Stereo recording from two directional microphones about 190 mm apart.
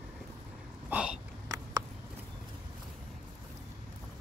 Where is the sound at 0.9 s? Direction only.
5° right (ahead or behind).